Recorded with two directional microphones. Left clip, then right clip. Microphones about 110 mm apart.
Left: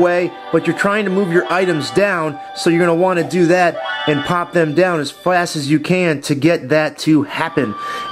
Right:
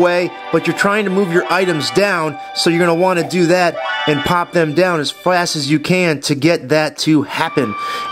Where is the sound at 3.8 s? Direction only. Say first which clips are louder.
Right 2 dB; 15° right (ahead or behind).